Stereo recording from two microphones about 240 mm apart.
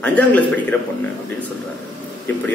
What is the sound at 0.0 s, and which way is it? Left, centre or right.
Speech, centre.